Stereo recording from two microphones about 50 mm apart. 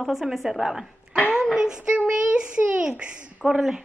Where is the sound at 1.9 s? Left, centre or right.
Right.